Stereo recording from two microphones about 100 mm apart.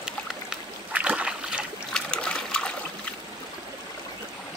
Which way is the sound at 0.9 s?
15° right (ahead or behind).